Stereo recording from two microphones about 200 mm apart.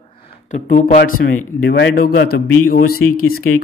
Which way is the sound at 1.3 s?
60° left (ahead or behind).